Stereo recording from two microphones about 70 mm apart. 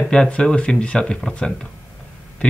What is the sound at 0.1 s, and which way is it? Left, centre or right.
Speech, centre.